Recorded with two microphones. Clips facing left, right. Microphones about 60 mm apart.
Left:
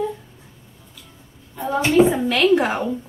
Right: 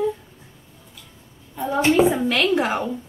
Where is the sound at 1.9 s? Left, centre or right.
Centre.